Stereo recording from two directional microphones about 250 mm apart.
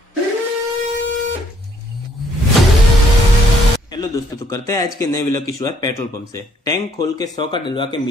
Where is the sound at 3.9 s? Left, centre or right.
Centre.